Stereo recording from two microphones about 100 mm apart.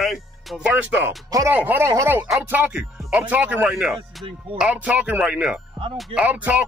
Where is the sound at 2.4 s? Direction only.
15° right (ahead or behind).